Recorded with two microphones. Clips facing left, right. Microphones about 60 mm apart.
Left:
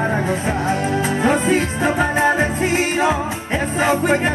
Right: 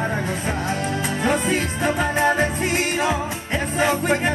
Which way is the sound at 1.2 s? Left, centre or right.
Centre.